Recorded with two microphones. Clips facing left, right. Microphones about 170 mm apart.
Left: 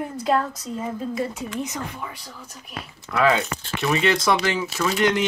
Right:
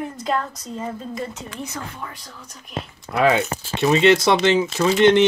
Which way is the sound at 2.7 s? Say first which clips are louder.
Right 2 dB; 25° right (ahead or behind).